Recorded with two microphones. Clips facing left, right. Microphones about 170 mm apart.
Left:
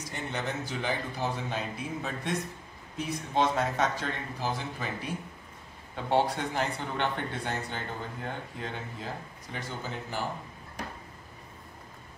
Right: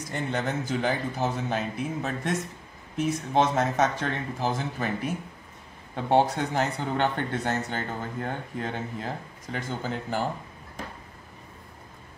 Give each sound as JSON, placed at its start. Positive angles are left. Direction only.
{"t": 0.1, "sound": "speech", "side_deg": -50}